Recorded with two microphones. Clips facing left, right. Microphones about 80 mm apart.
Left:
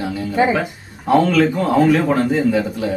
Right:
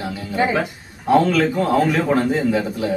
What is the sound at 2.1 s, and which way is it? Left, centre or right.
Speech, centre.